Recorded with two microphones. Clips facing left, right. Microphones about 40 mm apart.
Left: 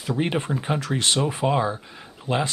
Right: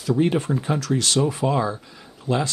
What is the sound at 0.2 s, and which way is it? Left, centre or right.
Speech, left.